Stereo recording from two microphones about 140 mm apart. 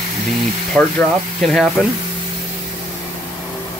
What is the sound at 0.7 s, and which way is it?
Speech, 5° left (ahead or behind).